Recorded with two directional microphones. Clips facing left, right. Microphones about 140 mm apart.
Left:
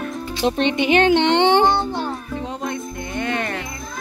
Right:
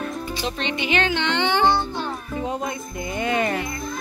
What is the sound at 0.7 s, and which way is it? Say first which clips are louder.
Speech: left 6 dB; 55° left (ahead or behind).